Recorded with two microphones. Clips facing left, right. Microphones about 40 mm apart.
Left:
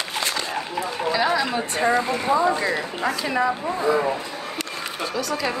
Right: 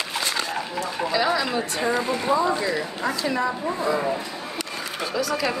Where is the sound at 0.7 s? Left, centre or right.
Centre.